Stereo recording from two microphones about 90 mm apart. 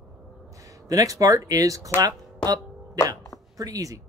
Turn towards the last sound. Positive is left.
turn(degrees=-40)  # may be behind; listen again after turning